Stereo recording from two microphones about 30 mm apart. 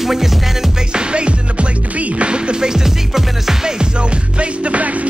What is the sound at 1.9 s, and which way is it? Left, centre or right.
Music, right.